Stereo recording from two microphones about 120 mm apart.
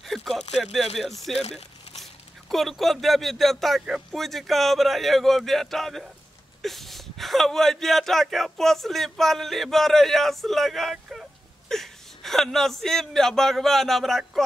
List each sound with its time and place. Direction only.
0.0 s a sound: centre (ahead or behind)
0.9 s speech: centre (ahead or behind)
2.5 s speech: centre (ahead or behind)